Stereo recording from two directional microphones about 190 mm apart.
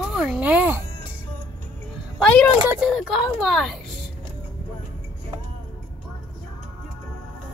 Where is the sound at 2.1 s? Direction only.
5° left (ahead or behind).